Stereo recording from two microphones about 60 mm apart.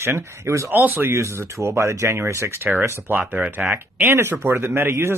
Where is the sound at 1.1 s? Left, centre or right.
Right.